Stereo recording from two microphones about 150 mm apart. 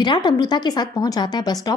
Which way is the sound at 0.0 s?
30° left (ahead or behind).